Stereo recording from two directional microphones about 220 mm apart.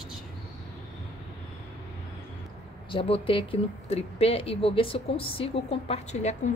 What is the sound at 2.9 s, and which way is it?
Speech, 25° left (ahead or behind).